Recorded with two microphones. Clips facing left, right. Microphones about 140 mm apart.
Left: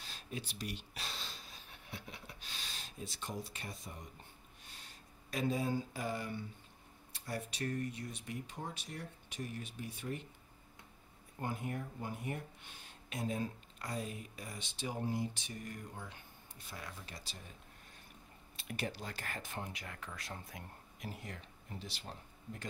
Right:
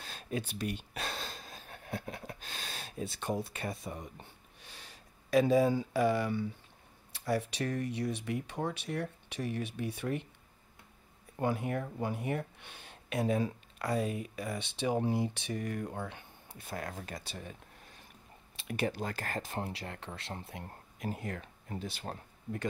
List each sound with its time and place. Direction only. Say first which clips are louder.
0.0 s a sound: right 8 dB; 55° right (ahead or behind); by 6.4 s 80° right
7.1 s speech: right 10 dB; 80° right
11.3 s speech: right 8 dB; 90° right; by 17.4 s 55° right (ahead or behind)
18.8 s speech: right 8 dB; 55° right (ahead or behind); by 20.6 s 30° right (ahead or behind)
21.0 s speech: right 9 dB; 50° right (ahead or behind)